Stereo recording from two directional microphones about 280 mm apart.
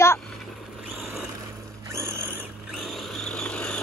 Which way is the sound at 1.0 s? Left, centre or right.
Centre.